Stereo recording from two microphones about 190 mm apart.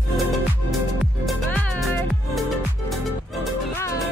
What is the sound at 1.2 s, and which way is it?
Music, centre (ahead or behind).